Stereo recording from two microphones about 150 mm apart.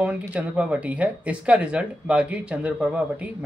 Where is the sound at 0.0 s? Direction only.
5° right (ahead or behind).